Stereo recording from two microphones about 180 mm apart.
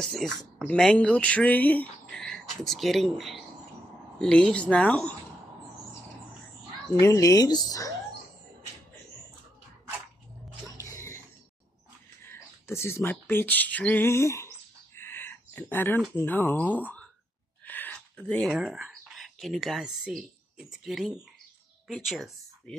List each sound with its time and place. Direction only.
0.0 s speech: centre (ahead or behind)
7.0 s speech: 15° left (ahead or behind)
10.8 s music: 15° left (ahead or behind)
12.3 s speech: 15° left (ahead or behind)
15.0 s a sound: 10° left (ahead or behind)
16.2 s speech: 10° left (ahead or behind)